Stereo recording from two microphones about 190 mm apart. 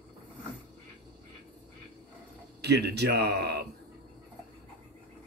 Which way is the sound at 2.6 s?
60° right (ahead or behind).